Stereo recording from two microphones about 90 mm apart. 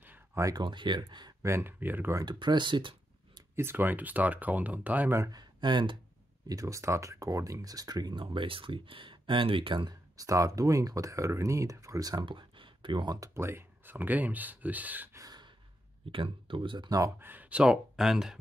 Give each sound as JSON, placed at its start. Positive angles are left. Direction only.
{"t": 0.0, "sound": "a sound", "side_deg": -20}
{"t": 0.6, "sound": "speech", "side_deg": -60}
{"t": 1.4, "sound": "speech", "side_deg": -25}
{"t": 2.2, "sound": "speech", "side_deg": -55}
{"t": 3.5, "sound": "speech", "side_deg": -25}
{"t": 5.2, "sound": "speech", "side_deg": -50}
{"t": 6.4, "sound": "speech", "side_deg": -40}
{"t": 9.8, "sound": "speech", "side_deg": -40}
{"t": 12.3, "sound": "speech", "side_deg": -70}
{"t": 13.3, "sound": "speech", "side_deg": -30}
{"t": 15.1, "sound": "gasp", "side_deg": -50}
{"t": 16.1, "sound": "speech", "side_deg": -75}
{"t": 17.2, "sound": "speech", "side_deg": -20}